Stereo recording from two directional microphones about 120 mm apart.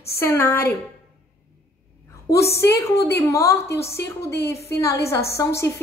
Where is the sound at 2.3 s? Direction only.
20° left (ahead or behind).